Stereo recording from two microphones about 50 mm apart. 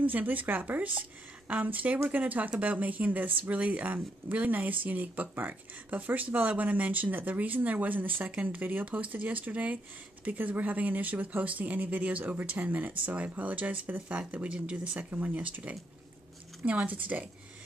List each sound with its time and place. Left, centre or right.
0.0 s speech: right
5.3 s speech: right
5.9 s speech: right